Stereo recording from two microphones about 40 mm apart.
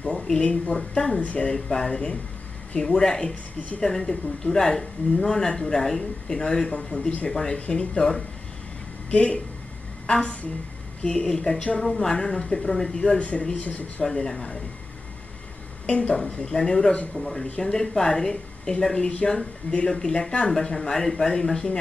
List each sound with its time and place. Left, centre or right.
0.0 s speech: left
0.7 s speech: centre
1.2 s speech: left
1.5 s speech: centre
7.5 s speech: left
9.1 s a woman's voice: left; by 12.9 s centre
13.2 s speech: left
14.0 s speech: centre
15.9 s speech: left
16.4 s speech: centre
18.9 s speech: left